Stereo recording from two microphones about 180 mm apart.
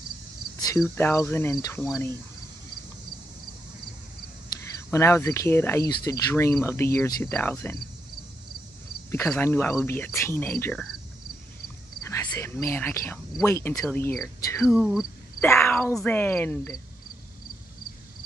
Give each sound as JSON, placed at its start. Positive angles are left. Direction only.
{"t": 0.6, "sound": "speech", "side_deg": 15}
{"t": 4.9, "sound": "speech", "side_deg": 15}
{"t": 9.3, "sound": "speech", "side_deg": 10}
{"t": 12.1, "sound": "speech", "side_deg": 15}
{"t": 14.7, "sound": "speech", "side_deg": -5}
{"t": 15.4, "sound": "speech", "side_deg": 15}